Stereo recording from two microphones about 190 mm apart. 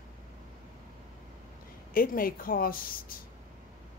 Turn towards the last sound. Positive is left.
turn(degrees=50)  # may be behind; listen again after turning